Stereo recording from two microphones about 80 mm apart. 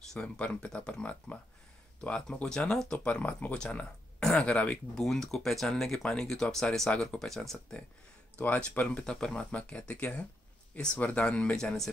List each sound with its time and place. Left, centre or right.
0.1 s speech: centre
5.0 s speech: centre
8.4 s speech: centre